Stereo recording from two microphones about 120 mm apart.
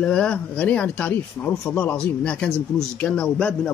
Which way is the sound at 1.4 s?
25° left (ahead or behind).